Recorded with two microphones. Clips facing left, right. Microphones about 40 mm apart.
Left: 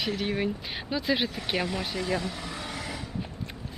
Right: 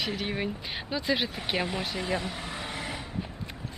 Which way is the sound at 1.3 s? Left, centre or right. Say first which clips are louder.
Left 1 dB; centre.